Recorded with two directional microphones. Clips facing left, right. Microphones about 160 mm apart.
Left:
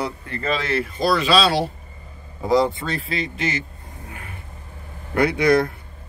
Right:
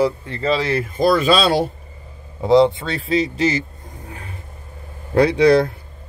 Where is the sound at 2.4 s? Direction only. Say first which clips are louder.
Right 5 dB; 25° right (ahead or behind).